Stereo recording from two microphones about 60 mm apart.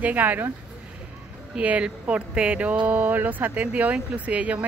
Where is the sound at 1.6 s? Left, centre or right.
Right.